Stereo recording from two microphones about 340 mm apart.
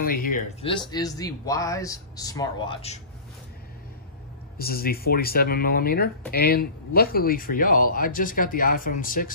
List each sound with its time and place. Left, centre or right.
0.0 s speech: left
4.6 s speech: left